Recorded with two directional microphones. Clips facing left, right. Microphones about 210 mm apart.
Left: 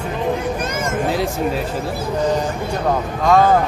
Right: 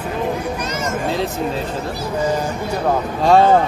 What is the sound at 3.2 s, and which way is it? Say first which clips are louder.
Speech: right 2 dB; 30° right (ahead or behind).